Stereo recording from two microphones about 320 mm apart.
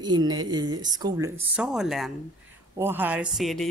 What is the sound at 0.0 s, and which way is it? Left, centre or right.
Speech, centre.